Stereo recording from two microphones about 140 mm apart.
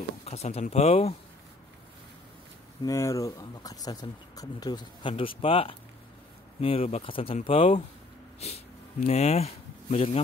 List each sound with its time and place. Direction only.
0.2 s speech: 50° left (ahead or behind)
2.8 s speech: 25° left (ahead or behind); by 10.2 s 45° left (ahead or behind)